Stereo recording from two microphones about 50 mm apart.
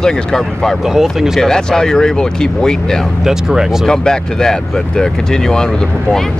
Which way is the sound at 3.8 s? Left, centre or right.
Centre.